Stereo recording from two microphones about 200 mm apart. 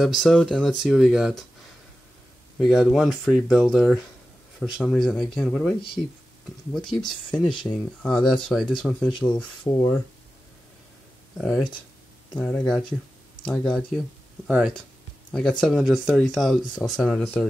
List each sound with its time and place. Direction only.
0.0 s speech: centre (ahead or behind)
2.6 s speech: centre (ahead or behind)
9.1 s speech: 20° left (ahead or behind)
11.3 s speech: centre (ahead or behind)
15.3 s speech: 5° left (ahead or behind)